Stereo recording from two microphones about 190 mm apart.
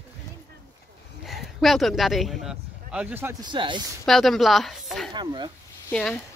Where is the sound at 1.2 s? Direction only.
Centre (ahead or behind); by 3.8 s 25° right (ahead or behind).